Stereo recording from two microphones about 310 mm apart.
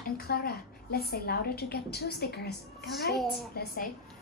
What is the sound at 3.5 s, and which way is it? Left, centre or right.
Speech, left.